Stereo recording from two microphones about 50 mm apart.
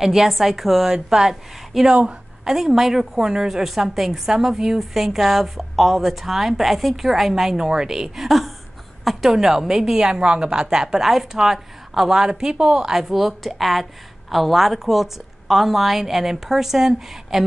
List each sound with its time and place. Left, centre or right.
0.0 s a woman's voice: centre
1.9 s a woman's voice: centre
2.4 s a woman's voice: centre